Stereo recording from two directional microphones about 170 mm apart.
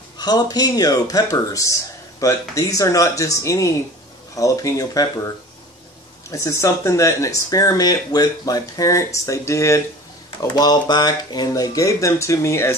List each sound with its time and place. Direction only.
0.2 s speech: 25° left (ahead or behind)
6.3 s speech: 15° left (ahead or behind)